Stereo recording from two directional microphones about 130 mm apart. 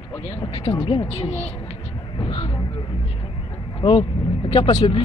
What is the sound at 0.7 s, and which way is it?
Speech, 45° left (ahead or behind).